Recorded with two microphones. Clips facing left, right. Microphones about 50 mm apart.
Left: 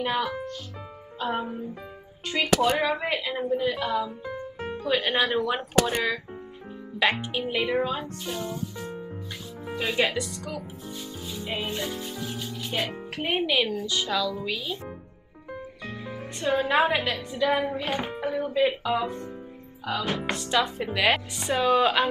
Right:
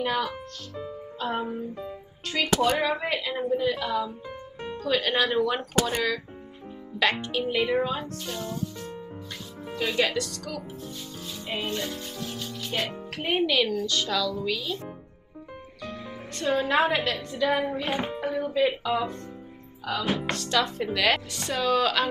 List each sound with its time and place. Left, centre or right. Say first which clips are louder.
0.0 s speech: left 1 dB; centre
7.5 s speech: even; centre
9.7 s speech: even; centre
11.4 s speech: even; centre
16.3 s speech: left 1 dB; centre